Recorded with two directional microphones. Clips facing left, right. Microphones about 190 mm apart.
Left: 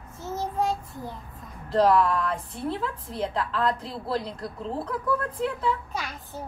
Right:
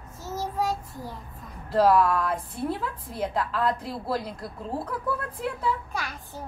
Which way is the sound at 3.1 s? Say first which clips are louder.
Right 2 dB; 10° right (ahead or behind).